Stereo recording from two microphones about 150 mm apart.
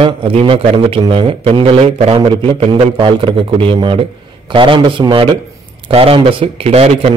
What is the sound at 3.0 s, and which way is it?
A man's voice, 35° right (ahead or behind).